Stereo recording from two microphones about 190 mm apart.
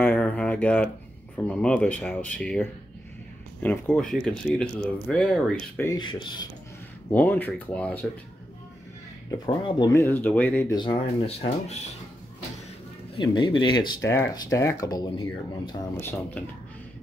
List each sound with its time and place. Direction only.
0.0 s a sound: 10° left (ahead or behind)
1.3 s speech: 5° left (ahead or behind)
5.9 s speech: 25° left (ahead or behind)
7.1 s speech: 10° left (ahead or behind)
9.8 s speech: 15° left (ahead or behind)
10.7 s speech: 25° left (ahead or behind)
13.1 s speech: 25° left (ahead or behind)